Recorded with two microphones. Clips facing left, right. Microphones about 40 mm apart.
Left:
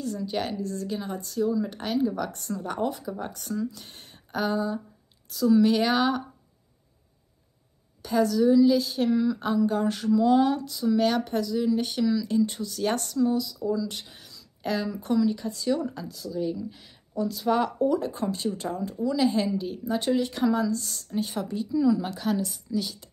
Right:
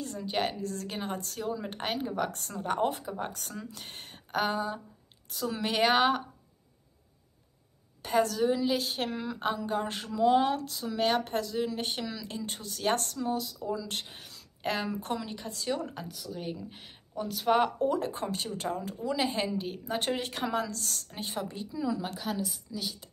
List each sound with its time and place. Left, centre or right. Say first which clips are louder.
0.0 s a woman's voice: left 2 dB; right
0.6 s a woman's voice: left 4 dB; right
1.5 s a woman's voice: left 6 dB; right
3.7 s a sound: right 2 dB; right
5.3 s a woman's voice: left 11 dB; right
8.0 s a woman's voice: left 4 dB; right
10.7 s a woman's voice: left 5 dB; centre; by 15.3 s right
15.3 s speech: left 6 dB; right
15.8 s a woman's voice: left 5 dB; right
19.9 s a woman's voice: left 7 dB; right
20.7 s a woman's voice: left 7 dB; right
21.5 s speech: left 10 dB; right
22.0 s speech: left 6 dB; centre